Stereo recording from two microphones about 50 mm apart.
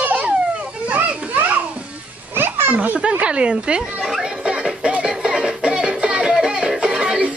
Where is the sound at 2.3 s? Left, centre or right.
Right.